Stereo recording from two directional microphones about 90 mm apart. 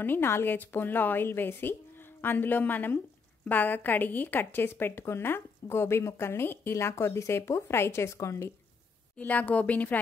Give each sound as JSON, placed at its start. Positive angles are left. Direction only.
{"t": 0.0, "sound": "a woman's voice", "side_deg": 25}
{"t": 9.1, "sound": "speech", "side_deg": 15}